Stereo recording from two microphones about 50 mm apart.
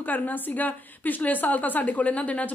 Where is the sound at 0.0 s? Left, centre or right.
Left.